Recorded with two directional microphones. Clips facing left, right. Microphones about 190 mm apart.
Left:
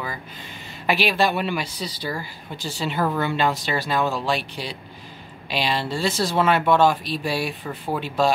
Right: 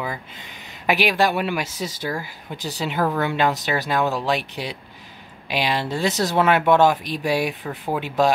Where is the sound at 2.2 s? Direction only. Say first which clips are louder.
Right 1 dB; 15° right (ahead or behind).